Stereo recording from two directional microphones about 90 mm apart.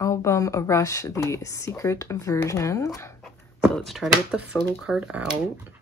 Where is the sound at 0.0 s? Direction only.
35° left (ahead or behind).